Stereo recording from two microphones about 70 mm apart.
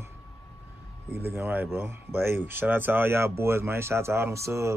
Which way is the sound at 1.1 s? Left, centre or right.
Right.